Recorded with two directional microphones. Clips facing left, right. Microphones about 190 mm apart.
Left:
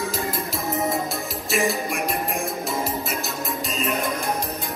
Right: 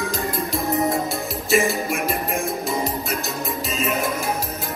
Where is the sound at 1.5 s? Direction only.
Centre (ahead or behind).